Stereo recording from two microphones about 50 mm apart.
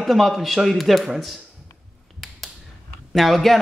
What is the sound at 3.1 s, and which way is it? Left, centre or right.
Speech, centre.